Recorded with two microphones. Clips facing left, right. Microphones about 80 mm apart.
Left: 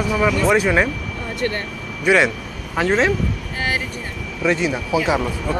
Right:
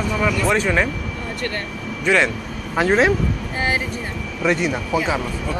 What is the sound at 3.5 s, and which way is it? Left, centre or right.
Vehicle, right.